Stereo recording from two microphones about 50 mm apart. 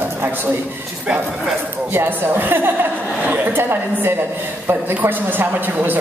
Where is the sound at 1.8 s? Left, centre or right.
Right.